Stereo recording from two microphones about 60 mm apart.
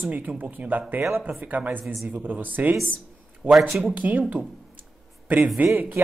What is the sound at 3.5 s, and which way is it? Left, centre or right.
Speech, centre.